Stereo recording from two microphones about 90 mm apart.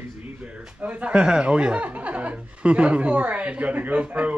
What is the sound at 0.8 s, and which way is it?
Speech, 15° right (ahead or behind).